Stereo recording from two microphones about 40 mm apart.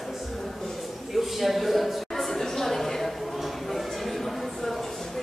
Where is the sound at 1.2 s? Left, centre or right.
Centre.